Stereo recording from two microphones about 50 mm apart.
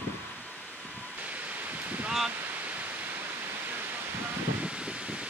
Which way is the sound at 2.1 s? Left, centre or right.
Centre.